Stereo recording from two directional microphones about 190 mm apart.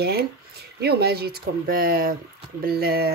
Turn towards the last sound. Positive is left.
turn(degrees=-55)  # may be behind; listen again after turning